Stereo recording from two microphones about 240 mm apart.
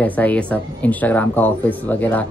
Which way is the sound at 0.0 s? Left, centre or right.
Centre.